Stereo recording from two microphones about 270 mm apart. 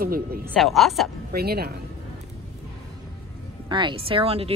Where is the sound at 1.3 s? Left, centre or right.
Right.